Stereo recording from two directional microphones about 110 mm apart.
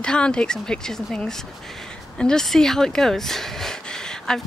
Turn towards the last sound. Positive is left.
turn(degrees=5)  # may be behind; listen again after turning